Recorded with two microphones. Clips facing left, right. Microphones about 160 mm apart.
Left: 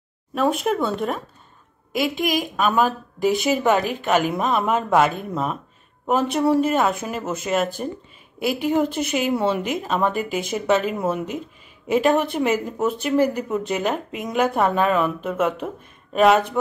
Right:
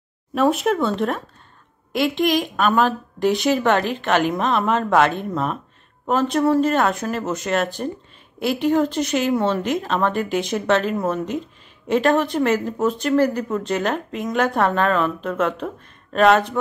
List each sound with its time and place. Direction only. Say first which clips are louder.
0.3 s a woman's voice: right 2 dB; centre (ahead or behind)